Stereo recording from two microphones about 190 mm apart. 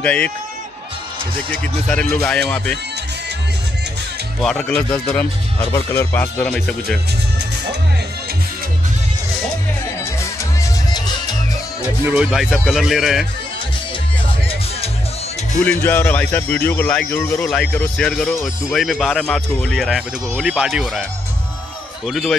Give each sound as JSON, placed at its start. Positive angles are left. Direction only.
{"t": 0.0, "sound": "speech", "side_deg": 5}
{"t": 1.5, "sound": "speech", "side_deg": 5}
{"t": 4.4, "sound": "speech", "side_deg": 5}
{"t": 12.1, "sound": "speech", "side_deg": -5}
{"t": 15.6, "sound": "speech", "side_deg": 10}
{"t": 22.0, "sound": "speech", "side_deg": 0}